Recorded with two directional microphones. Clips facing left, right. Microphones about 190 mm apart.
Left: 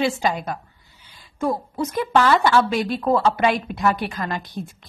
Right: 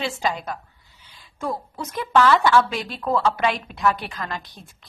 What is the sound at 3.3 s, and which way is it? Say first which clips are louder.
Speech: left 4 dB; 50° left (ahead or behind).